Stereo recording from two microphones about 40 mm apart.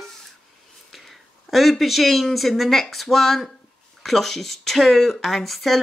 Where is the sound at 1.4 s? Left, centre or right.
Centre.